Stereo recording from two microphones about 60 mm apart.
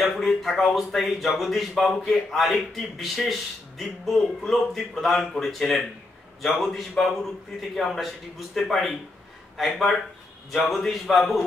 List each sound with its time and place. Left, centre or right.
0.0 s speech: centre